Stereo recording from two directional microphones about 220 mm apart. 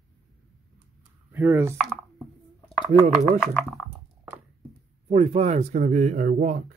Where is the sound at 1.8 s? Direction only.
Centre (ahead or behind).